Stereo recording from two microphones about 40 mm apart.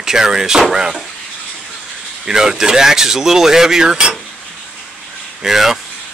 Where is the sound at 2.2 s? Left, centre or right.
Centre.